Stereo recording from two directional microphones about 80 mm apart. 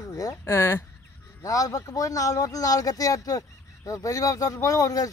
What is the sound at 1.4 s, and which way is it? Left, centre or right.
Speech, left.